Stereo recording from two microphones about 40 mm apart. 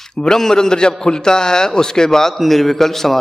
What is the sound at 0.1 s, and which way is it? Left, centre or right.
A man's voice, centre.